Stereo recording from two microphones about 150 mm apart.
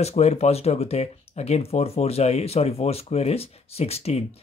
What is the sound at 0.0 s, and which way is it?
Speech, 45° left (ahead or behind).